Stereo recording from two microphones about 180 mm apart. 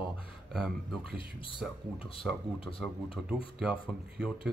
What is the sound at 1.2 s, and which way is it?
Speech, 30° left (ahead or behind).